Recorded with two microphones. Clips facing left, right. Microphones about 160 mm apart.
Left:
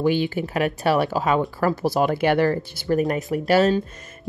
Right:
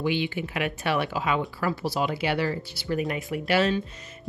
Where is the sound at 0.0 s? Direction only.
40° left (ahead or behind).